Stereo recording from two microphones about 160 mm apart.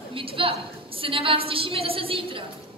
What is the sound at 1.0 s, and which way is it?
A woman's voice, 35° right (ahead or behind).